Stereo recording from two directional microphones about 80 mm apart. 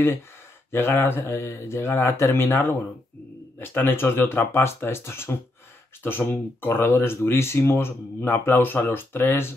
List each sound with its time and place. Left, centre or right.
0.7 s speech: left